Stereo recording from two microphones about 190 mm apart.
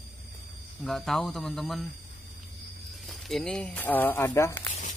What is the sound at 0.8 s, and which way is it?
Speech, centre (ahead or behind).